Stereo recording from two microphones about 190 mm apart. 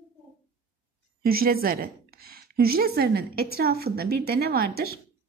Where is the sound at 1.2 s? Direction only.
50° right (ahead or behind).